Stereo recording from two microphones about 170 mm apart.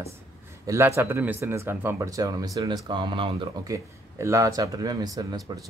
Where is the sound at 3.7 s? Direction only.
20° right (ahead or behind).